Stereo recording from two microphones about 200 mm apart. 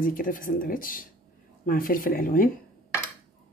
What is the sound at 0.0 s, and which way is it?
Speech, 45° left (ahead or behind).